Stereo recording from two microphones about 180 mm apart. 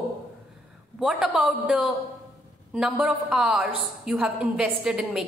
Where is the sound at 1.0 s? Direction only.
5° right (ahead or behind).